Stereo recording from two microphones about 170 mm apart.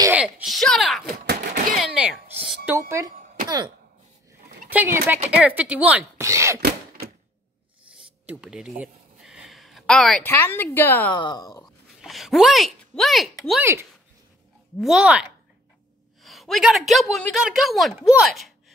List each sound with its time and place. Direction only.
0.1 s a sound: 5° right (ahead or behind)
1.2 s a sound: 75° right (ahead or behind)
2.3 s music: 5° right (ahead or behind)
3.0 s speech: 15° right (ahead or behind)
3.4 s cough: 25° right (ahead or behind)
4.6 s speech: 10° right (ahead or behind)
8.3 s speech: 5° right (ahead or behind); by 11.1 s 10° left (ahead or behind)
11.1 s speech: 25° left (ahead or behind)
12.0 s speech: centre (ahead or behind)
14.8 s a woman's voice: 5° right (ahead or behind)